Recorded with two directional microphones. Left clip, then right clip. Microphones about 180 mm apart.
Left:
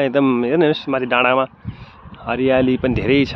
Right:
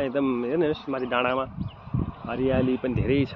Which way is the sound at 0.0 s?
70° left (ahead or behind).